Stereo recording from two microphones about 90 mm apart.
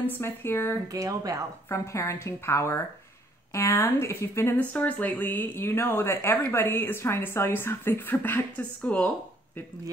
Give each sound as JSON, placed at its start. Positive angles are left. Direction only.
{"t": 0.0, "sound": "speech", "side_deg": 25}
{"t": 0.9, "sound": "speech", "side_deg": -40}
{"t": 1.7, "sound": "a woman's voice", "side_deg": 30}